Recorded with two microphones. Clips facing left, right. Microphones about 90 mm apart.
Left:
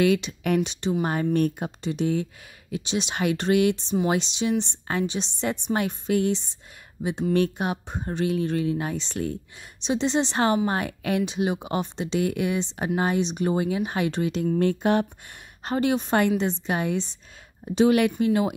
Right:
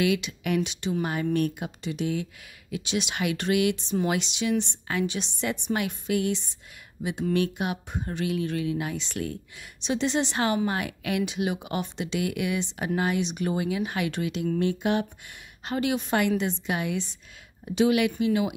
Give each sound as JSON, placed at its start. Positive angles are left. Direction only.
{"t": 0.0, "sound": "a woman's voice", "side_deg": 35}